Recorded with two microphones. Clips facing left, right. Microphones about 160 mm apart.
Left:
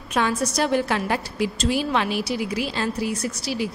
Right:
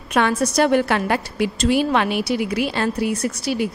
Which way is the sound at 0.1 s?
65° right (ahead or behind).